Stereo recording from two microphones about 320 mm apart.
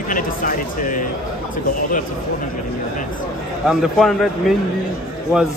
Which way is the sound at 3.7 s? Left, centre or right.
Centre.